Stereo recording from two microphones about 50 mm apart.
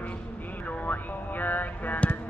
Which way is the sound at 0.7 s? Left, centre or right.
Left.